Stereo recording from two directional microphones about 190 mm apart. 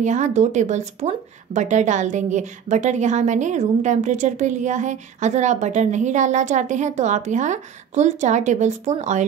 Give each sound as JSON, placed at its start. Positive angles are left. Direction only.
{"t": 0.0, "sound": "speech", "side_deg": -40}